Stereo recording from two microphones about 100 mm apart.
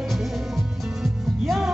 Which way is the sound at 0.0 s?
Centre (ahead or behind).